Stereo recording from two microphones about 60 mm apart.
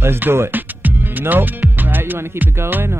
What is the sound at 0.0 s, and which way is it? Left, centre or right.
Speech, right.